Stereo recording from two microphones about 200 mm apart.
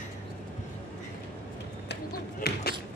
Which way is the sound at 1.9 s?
50° left (ahead or behind).